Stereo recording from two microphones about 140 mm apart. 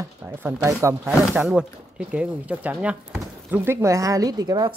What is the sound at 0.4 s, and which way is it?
Speech, 15° right (ahead or behind).